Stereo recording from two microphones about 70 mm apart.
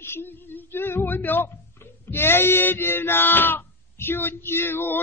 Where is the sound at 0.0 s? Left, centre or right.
Left.